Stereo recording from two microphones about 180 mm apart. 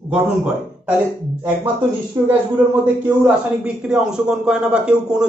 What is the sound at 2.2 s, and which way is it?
Speech, 15° right (ahead or behind).